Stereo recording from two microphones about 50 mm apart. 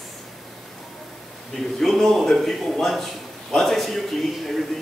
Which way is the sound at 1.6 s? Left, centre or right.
Centre.